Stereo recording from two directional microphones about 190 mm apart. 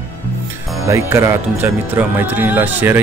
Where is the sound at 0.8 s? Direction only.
15° right (ahead or behind).